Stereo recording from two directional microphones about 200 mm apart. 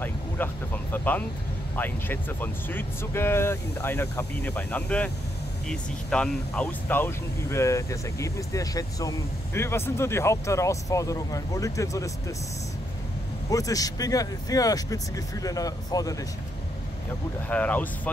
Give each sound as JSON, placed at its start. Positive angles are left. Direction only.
{"t": 0.9, "sound": "speech", "side_deg": 10}
{"t": 13.5, "sound": "speech", "side_deg": 15}
{"t": 17.5, "sound": "speech", "side_deg": 5}